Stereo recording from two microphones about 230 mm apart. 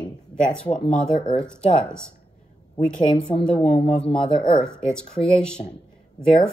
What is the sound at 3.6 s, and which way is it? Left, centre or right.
Speech, left.